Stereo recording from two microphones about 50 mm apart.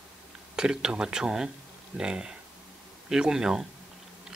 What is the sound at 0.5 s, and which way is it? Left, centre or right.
Speech, centre.